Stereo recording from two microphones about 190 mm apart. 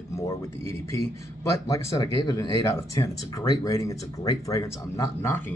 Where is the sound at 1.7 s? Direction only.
15° left (ahead or behind).